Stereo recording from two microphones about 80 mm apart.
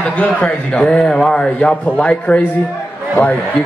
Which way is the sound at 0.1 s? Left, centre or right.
Centre.